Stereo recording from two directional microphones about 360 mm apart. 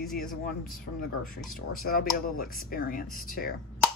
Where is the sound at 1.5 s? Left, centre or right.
Left.